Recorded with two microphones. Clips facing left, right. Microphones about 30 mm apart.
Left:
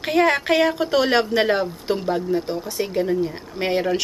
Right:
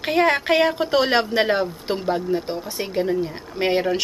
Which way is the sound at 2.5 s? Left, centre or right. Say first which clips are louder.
Left 2 dB; centre.